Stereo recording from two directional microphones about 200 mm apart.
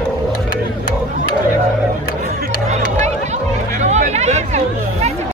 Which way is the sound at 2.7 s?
35° right (ahead or behind).